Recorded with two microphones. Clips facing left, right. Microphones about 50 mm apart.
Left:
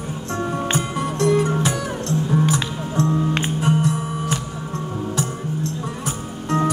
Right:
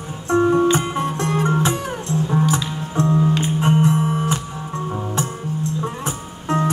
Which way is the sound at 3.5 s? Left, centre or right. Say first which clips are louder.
Right 4 dB; right.